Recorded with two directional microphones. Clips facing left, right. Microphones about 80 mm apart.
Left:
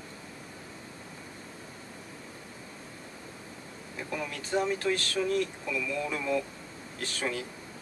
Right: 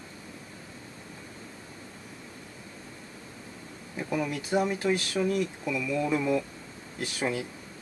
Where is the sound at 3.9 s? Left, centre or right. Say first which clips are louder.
Right 6 dB; centre.